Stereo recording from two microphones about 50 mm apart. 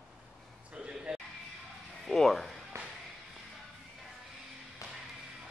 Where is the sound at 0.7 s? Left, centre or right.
Centre.